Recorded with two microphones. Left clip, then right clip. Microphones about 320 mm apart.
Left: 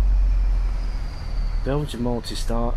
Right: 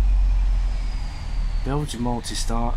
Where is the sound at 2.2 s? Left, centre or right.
Centre.